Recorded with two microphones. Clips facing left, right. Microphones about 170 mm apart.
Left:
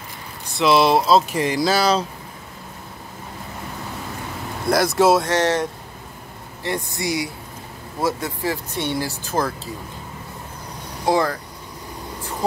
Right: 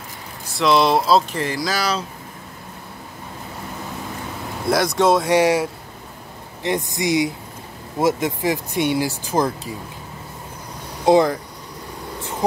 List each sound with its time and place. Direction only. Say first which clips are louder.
0.6 s speech: left 1 dB; centre (ahead or behind)
1.3 s speech: left 4 dB; 15° left (ahead or behind)
4.6 s speech: left 1 dB; centre (ahead or behind)
5.2 s speech: right 3 dB; 10° right (ahead or behind)
11.1 s speech: right 5 dB; 20° right (ahead or behind)